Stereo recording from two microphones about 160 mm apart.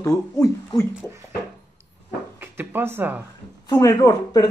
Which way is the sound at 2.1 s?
15° right (ahead or behind).